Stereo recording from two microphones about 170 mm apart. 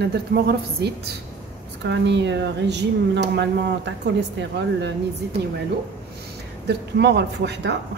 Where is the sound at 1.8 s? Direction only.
90° right.